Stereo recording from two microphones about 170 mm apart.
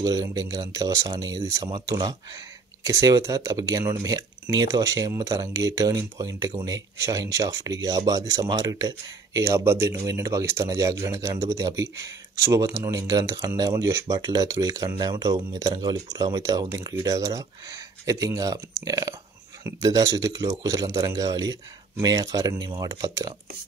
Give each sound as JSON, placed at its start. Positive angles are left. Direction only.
{"t": 0.0, "sound": "speech", "side_deg": -20}